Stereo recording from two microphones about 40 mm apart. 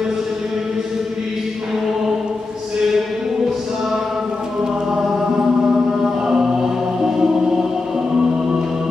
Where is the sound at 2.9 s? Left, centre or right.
Centre.